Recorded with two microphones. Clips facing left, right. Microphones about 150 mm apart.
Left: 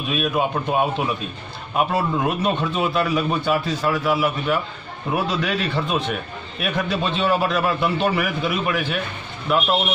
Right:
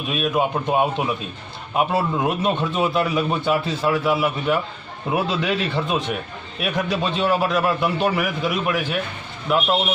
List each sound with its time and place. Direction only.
0.2 s a man's voice: 15° right (ahead or behind)